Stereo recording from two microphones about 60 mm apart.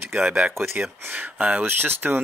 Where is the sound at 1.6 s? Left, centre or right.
Right.